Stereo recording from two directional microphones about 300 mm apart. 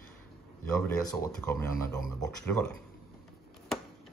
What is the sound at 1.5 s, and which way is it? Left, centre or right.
Speech, right.